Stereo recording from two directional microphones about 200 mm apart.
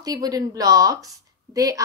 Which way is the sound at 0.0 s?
20° right (ahead or behind).